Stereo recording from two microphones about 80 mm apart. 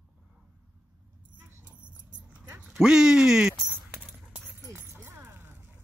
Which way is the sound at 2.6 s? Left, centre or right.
Centre.